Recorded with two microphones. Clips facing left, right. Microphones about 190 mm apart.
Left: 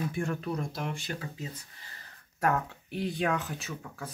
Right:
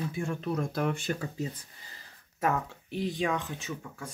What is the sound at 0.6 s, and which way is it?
Speech, 55° right (ahead or behind).